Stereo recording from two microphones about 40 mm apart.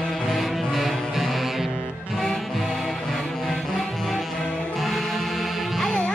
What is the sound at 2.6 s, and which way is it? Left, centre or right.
Music, centre.